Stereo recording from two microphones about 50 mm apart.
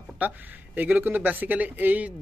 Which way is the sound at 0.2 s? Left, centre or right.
Right.